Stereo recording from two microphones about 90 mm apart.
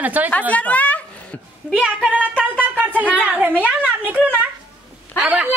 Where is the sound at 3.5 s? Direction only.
20° left (ahead or behind).